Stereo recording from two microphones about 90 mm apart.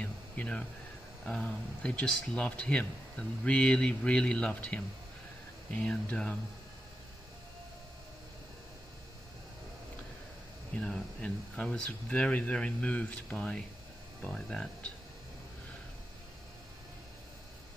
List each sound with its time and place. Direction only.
0.0 s a sound: 15° left (ahead or behind)
1.2 s speech: 10° left (ahead or behind)
10.8 s speech: 10° left (ahead or behind)